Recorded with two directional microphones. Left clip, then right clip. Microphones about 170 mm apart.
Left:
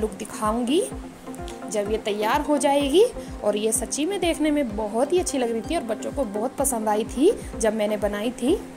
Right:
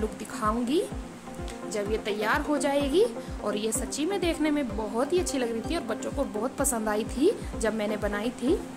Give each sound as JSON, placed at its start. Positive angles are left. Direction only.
{"t": 0.4, "sound": "a woman's voice", "side_deg": 20}